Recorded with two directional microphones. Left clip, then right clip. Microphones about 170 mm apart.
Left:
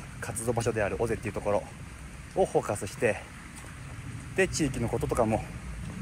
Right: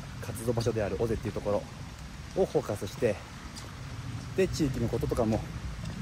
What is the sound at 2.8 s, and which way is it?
Speech, 5° right (ahead or behind).